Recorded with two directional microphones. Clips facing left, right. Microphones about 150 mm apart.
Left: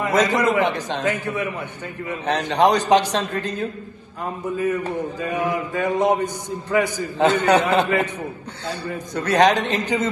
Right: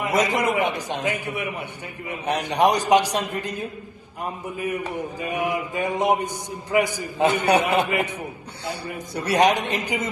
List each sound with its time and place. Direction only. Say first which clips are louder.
0.0 s mantra: left 3 dB; 15° right (ahead or behind)